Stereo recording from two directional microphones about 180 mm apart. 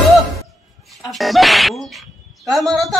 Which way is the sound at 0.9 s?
Centre (ahead or behind).